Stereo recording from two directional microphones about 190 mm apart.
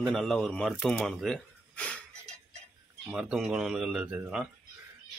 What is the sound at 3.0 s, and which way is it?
Speech, 5° right (ahead or behind).